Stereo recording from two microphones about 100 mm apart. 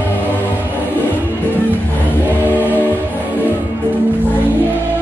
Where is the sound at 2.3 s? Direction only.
20° right (ahead or behind).